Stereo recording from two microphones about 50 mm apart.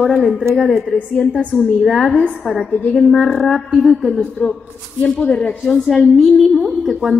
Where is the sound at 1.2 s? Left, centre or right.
Left.